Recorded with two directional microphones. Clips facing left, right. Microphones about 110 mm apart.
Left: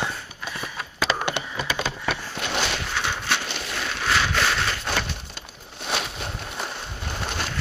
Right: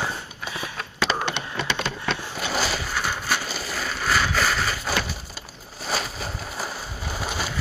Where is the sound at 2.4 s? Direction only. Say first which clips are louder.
Right 1 dB; 5° right (ahead or behind).